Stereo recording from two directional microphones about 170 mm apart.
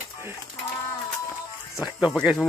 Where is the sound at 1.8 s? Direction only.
5° right (ahead or behind).